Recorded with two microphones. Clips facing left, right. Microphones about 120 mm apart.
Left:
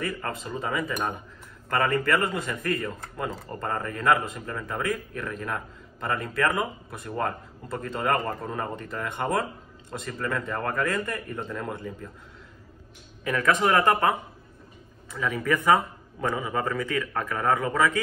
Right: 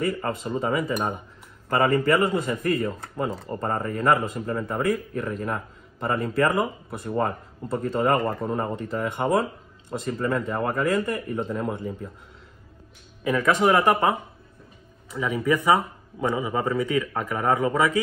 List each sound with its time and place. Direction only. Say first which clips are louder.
0.0 s a man's voice: right 5 dB; 25° right (ahead or behind)
10.2 s speech: right 3 dB; 30° right (ahead or behind)
10.6 s a man's voice: right 4 dB; 20° right (ahead or behind)
13.2 s a man's voice: right 3 dB; 15° right (ahead or behind)